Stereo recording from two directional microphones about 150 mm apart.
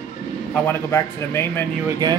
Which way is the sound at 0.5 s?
10° left (ahead or behind).